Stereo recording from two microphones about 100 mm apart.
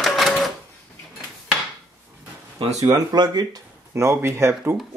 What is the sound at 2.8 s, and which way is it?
Speech, 40° right (ahead or behind).